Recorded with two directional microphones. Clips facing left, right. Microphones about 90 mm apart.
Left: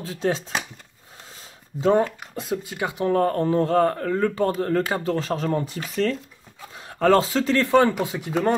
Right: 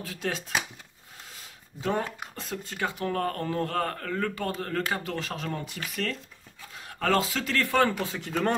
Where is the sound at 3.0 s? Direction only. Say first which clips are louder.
Left 11 dB; 30° left (ahead or behind).